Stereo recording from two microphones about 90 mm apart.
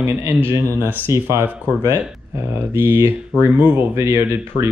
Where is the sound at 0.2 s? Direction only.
30° right (ahead or behind).